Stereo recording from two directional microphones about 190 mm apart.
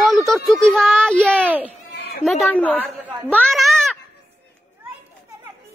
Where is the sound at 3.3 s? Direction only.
Centre (ahead or behind).